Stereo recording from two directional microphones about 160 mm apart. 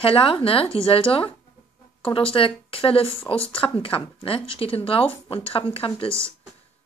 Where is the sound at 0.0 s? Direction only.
35° left (ahead or behind).